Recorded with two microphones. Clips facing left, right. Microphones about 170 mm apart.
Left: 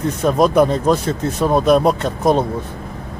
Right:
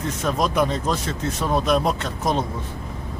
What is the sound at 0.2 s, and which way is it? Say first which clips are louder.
Speech: left 8 dB; 45° left (ahead or behind).